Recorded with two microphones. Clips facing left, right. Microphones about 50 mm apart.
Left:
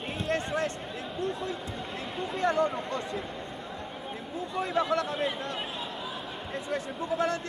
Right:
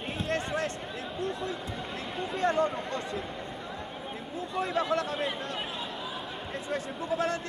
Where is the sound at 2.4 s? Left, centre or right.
Right.